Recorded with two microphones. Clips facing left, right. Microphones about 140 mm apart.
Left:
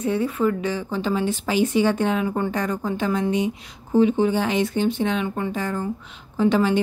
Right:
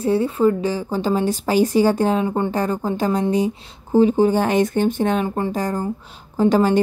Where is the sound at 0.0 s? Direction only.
30° right (ahead or behind).